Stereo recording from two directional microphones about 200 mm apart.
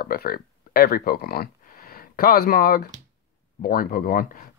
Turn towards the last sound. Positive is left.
turn(degrees=45)  # may be behind; listen again after turning